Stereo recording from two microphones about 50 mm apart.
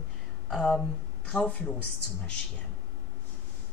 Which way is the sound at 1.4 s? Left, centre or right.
Left.